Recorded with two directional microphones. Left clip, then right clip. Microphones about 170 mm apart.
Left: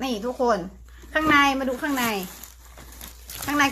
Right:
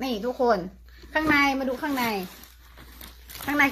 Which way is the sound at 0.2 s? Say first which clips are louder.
Even; 25° right (ahead or behind).